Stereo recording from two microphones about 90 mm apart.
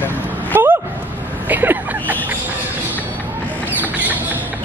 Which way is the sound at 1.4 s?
20° right (ahead or behind).